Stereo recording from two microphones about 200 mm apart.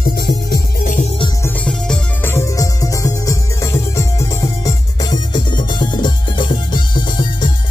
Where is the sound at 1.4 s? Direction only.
5° left (ahead or behind).